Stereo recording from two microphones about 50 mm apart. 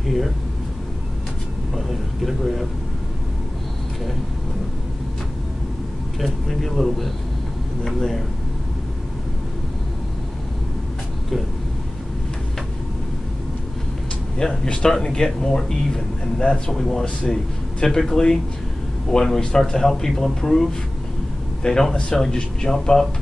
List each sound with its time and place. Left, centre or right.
2.2 s speech: centre
6.1 s speech: centre
14.4 s speech: centre
17.2 s speech: centre
17.8 s speech: centre